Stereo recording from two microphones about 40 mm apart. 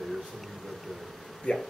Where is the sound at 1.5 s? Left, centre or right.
Left.